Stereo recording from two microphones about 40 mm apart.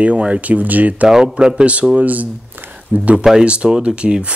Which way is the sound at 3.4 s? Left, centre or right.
Right.